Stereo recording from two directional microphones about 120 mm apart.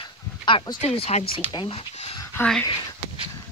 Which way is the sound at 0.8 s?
55° left (ahead or behind).